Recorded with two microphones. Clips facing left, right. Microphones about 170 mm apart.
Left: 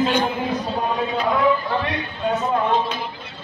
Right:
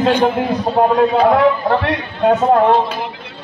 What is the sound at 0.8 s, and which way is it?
A man's voice, 60° right (ahead or behind).